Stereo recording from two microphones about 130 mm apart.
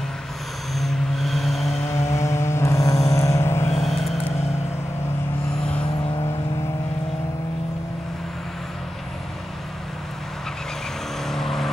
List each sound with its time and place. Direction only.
0.7 s vehicle: centre (ahead or behind)
2.1 s vehicle: 20° left (ahead or behind)
3.8 s vehicle: centre (ahead or behind)
11.2 s vehicle: centre (ahead or behind)